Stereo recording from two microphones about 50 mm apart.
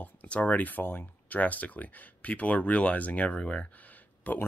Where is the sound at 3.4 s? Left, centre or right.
Centre.